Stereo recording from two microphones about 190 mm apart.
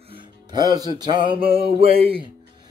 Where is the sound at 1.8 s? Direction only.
30° right (ahead or behind).